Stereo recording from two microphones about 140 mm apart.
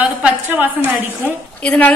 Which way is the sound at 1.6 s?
10° left (ahead or behind).